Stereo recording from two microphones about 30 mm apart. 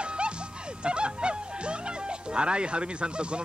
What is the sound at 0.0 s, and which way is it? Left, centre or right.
Music, right.